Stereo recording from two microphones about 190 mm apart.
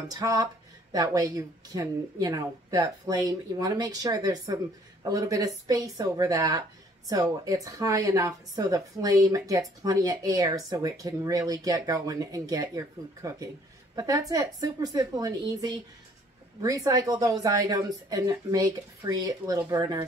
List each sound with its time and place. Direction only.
0.1 s speech: 20° right (ahead or behind)